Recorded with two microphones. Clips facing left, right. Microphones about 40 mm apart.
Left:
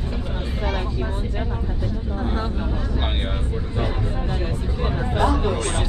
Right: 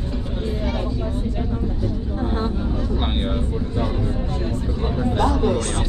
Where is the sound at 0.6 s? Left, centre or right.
Left.